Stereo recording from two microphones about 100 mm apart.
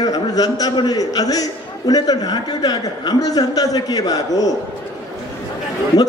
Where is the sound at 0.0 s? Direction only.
40° left (ahead or behind).